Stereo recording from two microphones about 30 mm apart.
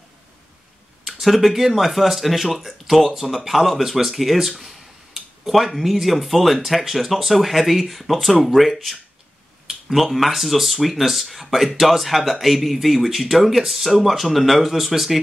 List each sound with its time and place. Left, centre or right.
1.0 s speech: centre